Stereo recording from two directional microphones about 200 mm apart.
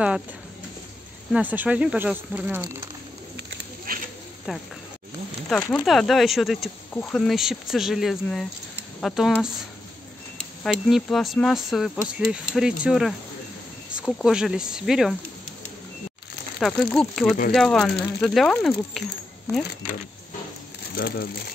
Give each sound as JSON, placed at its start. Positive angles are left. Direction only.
{"t": 1.3, "sound": "speech", "side_deg": -10}
{"t": 2.6, "sound": "speech", "side_deg": -20}
{"t": 3.3, "sound": "bird", "side_deg": -50}
{"t": 4.5, "sound": "speech", "side_deg": -5}
{"t": 5.7, "sound": "speech", "side_deg": 0}
{"t": 10.6, "sound": "speech", "side_deg": 0}
{"t": 16.5, "sound": "speech", "side_deg": 0}
{"t": 20.9, "sound": "speech", "side_deg": 50}